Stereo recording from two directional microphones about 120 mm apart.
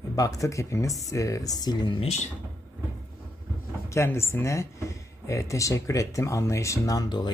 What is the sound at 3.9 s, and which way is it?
Speech, 20° left (ahead or behind).